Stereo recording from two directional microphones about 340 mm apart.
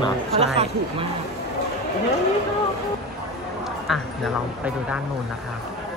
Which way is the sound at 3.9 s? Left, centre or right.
Centre.